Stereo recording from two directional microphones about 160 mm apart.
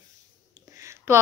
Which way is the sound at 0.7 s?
20° right (ahead or behind).